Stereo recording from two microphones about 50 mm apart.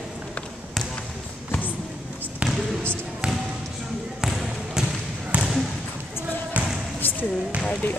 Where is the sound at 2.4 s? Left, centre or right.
Right.